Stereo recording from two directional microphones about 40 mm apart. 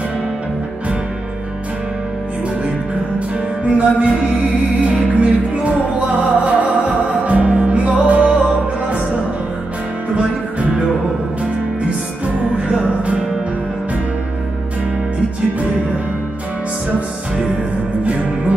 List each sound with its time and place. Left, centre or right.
3.6 s music: right